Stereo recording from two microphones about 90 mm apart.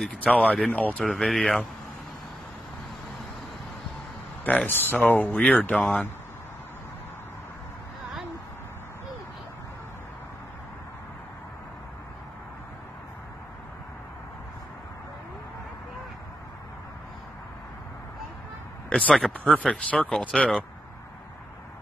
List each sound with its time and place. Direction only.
0.3 s speech: 15° left (ahead or behind)
1.0 s speech: 5° left (ahead or behind)
4.6 s speech: 25° left (ahead or behind)
18.9 s speech: 15° left (ahead or behind)